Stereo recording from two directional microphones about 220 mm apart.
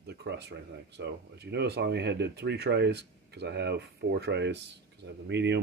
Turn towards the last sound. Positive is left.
turn(degrees=-50)  # may be behind; listen again after turning